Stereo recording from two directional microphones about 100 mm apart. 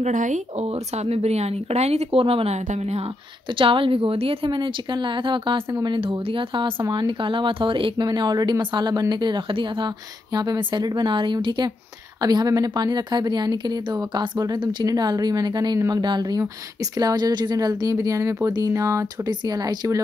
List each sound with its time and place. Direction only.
0.6 s speech: 90° right
3.5 s a woman's voice: 60° right (ahead or behind)
6.8 s speech: 50° right (ahead or behind)